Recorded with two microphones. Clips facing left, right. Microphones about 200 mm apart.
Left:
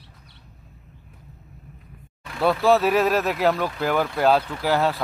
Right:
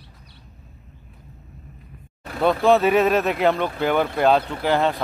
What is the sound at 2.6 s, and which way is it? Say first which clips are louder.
Speech: right 2 dB; centre (ahead or behind).